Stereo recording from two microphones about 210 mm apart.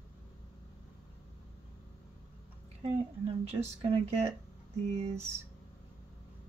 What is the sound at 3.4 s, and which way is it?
Speech, 30° right (ahead or behind).